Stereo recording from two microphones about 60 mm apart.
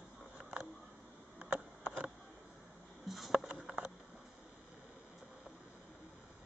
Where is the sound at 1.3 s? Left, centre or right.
Right.